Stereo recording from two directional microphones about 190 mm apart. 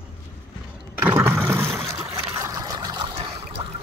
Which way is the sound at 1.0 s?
15° right (ahead or behind).